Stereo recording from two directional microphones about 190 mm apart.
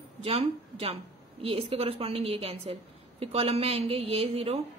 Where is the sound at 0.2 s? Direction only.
30° right (ahead or behind).